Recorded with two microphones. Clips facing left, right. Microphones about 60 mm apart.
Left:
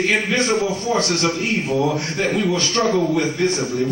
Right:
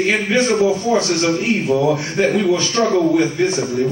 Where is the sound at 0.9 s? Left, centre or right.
Right.